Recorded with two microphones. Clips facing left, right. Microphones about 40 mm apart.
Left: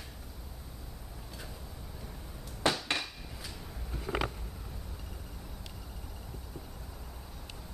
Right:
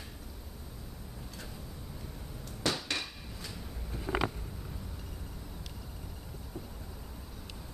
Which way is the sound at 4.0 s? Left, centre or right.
Centre.